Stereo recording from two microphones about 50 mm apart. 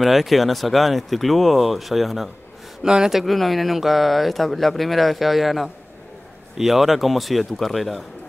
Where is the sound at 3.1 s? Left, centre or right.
Centre.